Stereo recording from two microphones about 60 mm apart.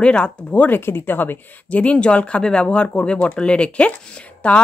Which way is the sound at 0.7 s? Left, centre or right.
Left.